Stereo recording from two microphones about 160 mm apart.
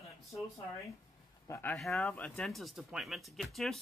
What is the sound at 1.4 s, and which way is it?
Speech, 20° left (ahead or behind).